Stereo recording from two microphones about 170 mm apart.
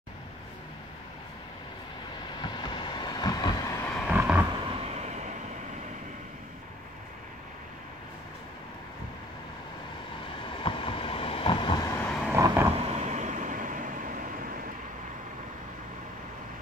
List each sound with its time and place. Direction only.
2.4 s vehicle: 25° left (ahead or behind)
4.1 s vehicle: 10° right (ahead or behind)
4.6 s vehicle: 35° right (ahead or behind)
10.6 s vehicle: 30° left (ahead or behind)
11.9 s vehicle: 10° left (ahead or behind)
12.3 s vehicle: 15° right (ahead or behind)
12.7 s vehicle: 40° right (ahead or behind)